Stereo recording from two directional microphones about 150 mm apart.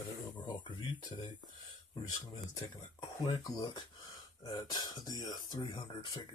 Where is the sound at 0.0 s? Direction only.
30° left (ahead or behind).